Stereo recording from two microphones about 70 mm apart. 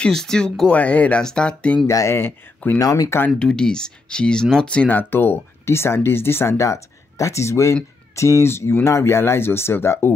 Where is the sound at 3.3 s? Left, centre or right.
Centre.